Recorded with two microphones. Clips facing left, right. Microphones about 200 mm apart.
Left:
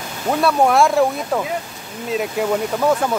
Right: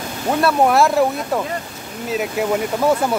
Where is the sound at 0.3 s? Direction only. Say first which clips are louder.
Even; centre (ahead or behind).